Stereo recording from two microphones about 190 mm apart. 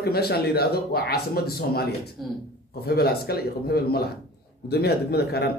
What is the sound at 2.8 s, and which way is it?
Speech, 55° left (ahead or behind).